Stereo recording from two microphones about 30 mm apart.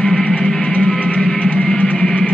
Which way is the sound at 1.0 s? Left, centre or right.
Left.